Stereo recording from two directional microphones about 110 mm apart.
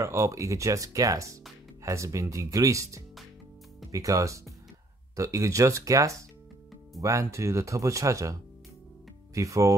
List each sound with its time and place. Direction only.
0.0 s speech: 30° right (ahead or behind)